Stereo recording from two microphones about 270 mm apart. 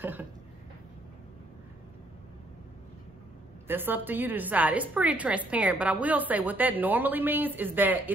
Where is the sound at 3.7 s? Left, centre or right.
Centre.